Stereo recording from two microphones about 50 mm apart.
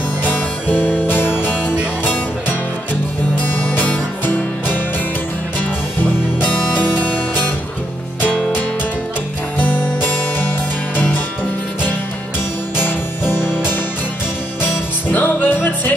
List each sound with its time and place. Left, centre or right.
0.2 s music: left
12.7 s music: left